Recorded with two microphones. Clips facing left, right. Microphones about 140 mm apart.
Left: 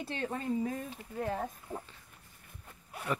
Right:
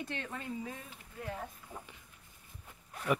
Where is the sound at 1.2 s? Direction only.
50° left (ahead or behind).